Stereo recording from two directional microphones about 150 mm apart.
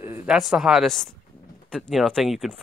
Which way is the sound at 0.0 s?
15° right (ahead or behind).